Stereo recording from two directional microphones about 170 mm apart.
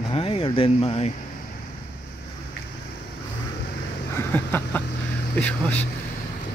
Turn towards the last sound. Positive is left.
turn(degrees=10)  # may be behind; listen again after turning